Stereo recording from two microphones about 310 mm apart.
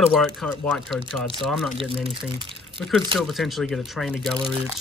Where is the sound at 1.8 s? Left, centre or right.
Centre.